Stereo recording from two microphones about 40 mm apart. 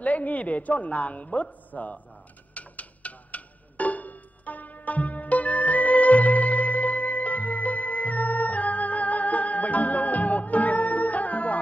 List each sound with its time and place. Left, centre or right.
0.0 s a woman's voice: left
2.5 s music: left